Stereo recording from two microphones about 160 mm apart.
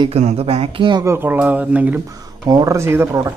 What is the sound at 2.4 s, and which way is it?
Speech, 20° right (ahead or behind).